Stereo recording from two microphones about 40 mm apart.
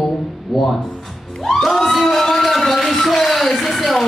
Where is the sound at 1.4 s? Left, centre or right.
Centre.